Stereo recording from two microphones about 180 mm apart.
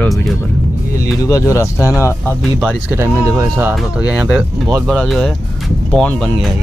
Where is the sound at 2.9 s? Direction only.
15° right (ahead or behind); by 6.2 s 5° left (ahead or behind).